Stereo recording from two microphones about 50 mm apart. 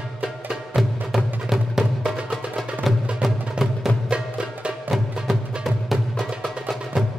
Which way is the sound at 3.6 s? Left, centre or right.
Right.